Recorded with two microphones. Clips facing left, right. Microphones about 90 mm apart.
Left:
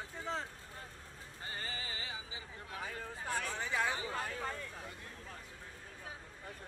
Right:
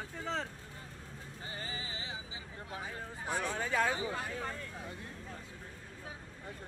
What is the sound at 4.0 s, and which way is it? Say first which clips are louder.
Vehicle: right 2 dB; 15° right (ahead or behind).